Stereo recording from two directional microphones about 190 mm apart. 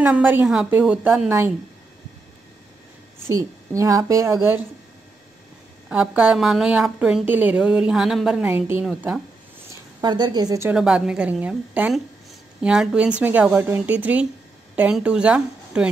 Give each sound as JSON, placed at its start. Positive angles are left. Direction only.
{"t": 0.0, "sound": "a woman's voice", "side_deg": -10}
{"t": 3.3, "sound": "a woman's voice", "side_deg": -15}
{"t": 5.9, "sound": "a woman's voice", "side_deg": -5}
{"t": 10.0, "sound": "a woman's voice", "side_deg": -20}
{"t": 10.7, "sound": "a woman's voice", "side_deg": -5}